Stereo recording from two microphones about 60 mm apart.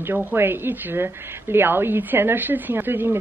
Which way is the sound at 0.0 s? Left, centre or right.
Right.